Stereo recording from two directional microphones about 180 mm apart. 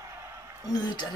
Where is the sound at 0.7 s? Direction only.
25° left (ahead or behind).